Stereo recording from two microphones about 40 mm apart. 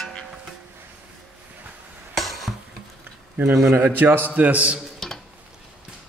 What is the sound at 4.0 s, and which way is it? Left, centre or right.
Speech, right.